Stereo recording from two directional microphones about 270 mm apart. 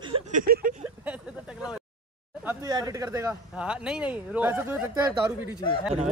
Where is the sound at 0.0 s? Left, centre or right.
Right.